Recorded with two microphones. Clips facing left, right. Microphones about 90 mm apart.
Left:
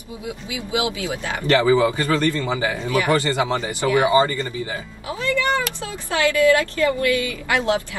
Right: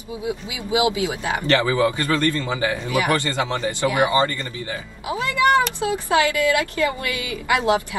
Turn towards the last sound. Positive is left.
turn(degrees=-20)  # may be behind; listen again after turning